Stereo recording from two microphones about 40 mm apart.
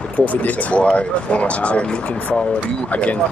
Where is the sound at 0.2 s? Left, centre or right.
Left.